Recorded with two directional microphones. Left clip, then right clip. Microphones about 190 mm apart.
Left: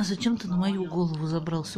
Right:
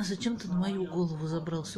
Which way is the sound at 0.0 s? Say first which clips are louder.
Left 5 dB; 30° left (ahead or behind).